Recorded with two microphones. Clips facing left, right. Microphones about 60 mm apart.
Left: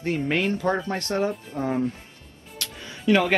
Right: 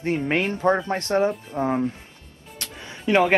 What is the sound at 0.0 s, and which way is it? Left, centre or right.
Speech, right.